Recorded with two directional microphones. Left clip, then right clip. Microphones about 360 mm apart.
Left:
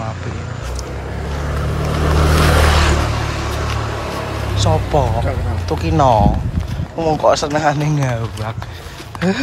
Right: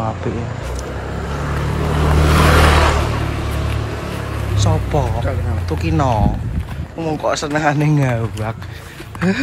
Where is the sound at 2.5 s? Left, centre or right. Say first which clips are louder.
Right 2 dB; centre.